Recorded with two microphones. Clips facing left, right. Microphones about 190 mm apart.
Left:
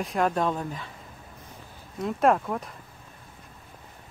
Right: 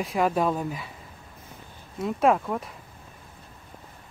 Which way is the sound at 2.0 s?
Centre (ahead or behind).